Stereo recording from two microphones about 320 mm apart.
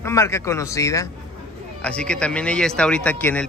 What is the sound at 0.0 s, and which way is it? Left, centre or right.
Speech, centre.